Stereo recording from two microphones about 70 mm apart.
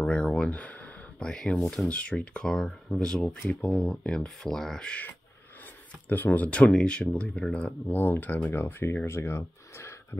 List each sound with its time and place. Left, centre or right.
0.0 s a sound: centre
1.2 s speech: centre
7.9 s speech: left